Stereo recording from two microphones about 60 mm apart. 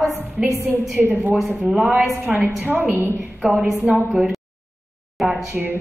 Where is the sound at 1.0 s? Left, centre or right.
Centre.